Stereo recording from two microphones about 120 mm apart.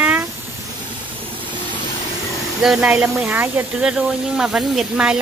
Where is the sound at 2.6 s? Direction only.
5° right (ahead or behind).